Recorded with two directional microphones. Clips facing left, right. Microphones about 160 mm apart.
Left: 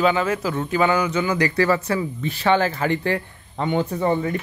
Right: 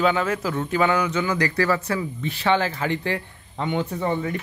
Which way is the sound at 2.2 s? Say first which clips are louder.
Left 2 dB; 45° left (ahead or behind).